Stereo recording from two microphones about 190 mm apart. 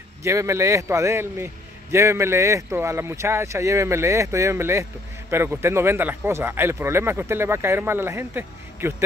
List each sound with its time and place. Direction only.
0.2 s a man's voice: 15° right (ahead or behind)